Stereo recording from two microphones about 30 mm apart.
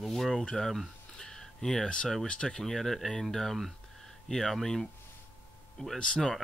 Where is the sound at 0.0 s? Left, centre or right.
Centre.